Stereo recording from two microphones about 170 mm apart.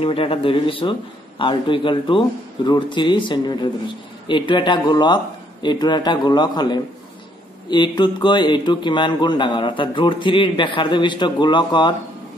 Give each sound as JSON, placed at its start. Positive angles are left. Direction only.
{"t": 0.0, "sound": "speech", "side_deg": 35}